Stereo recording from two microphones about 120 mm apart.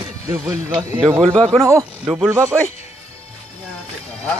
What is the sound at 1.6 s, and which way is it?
A man's voice, 25° right (ahead or behind).